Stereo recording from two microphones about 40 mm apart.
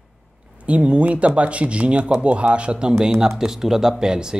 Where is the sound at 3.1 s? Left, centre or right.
Centre.